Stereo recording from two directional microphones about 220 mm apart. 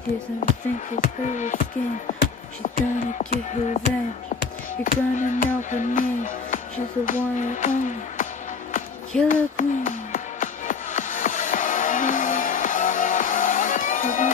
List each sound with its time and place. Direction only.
0.4 s music: 35° left (ahead or behind)
4.8 s music: 35° left (ahead or behind)
9.3 s music: 35° left (ahead or behind)